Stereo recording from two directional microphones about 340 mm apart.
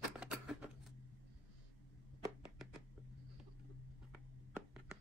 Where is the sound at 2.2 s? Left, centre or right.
Centre.